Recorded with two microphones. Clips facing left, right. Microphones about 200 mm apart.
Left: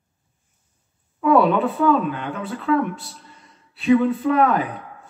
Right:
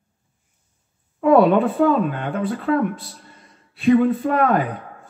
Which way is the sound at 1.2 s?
45° right (ahead or behind).